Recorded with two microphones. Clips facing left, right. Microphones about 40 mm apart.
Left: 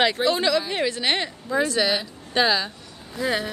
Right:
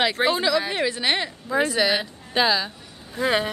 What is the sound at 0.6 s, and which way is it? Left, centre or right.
A woman's voice, centre.